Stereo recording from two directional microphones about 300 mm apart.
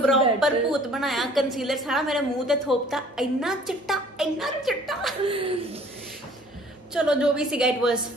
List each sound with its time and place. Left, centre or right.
0.4 s a woman's voice: centre
5.2 s speech: centre
6.9 s a woman's voice: centre